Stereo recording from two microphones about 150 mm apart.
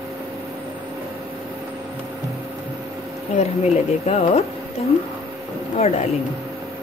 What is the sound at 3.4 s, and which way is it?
Speech, 45° left (ahead or behind).